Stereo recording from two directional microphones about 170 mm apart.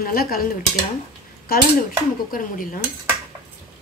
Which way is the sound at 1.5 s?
60° left (ahead or behind).